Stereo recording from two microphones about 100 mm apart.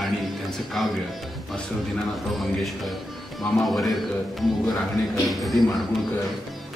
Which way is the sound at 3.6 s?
Centre (ahead or behind).